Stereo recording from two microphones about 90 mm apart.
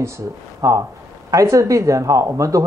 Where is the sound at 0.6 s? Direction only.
35° right (ahead or behind).